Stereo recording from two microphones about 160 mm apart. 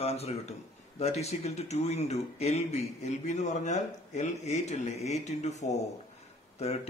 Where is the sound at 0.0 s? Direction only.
40° left (ahead or behind).